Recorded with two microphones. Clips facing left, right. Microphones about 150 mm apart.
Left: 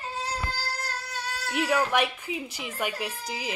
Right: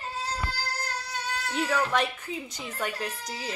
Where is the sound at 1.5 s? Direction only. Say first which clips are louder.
Left 2 dB; 10° left (ahead or behind).